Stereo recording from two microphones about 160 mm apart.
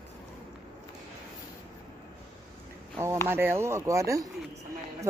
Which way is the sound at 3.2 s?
15° right (ahead or behind).